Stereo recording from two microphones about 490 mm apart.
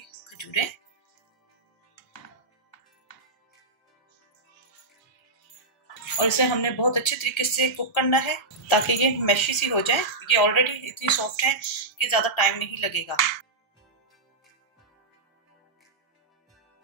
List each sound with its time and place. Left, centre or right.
0.4 s music: left
6.1 s speech: left